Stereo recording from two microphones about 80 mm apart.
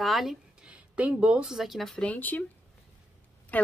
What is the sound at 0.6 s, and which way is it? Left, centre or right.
Speech, centre.